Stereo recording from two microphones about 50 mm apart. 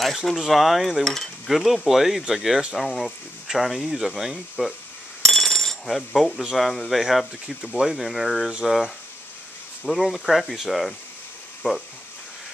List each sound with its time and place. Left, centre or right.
0.0 s speech: centre
1.0 s cutlery: centre
1.5 s speech: centre
5.2 s coin: centre
6.5 s speech: centre
8.5 s speech: centre
9.8 s speech: centre